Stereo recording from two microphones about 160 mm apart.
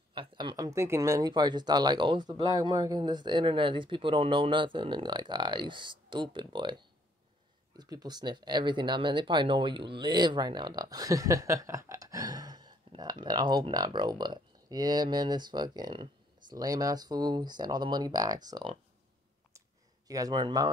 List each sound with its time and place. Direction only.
0.1 s speech: 30° right (ahead or behind)
20.1 s speech: 25° right (ahead or behind)